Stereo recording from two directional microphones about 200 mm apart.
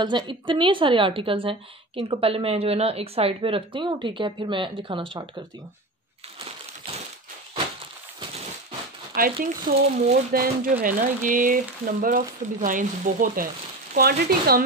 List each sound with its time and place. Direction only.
0.0 s a woman's voice: 25° right (ahead or behind)
9.1 s speech: 45° right (ahead or behind)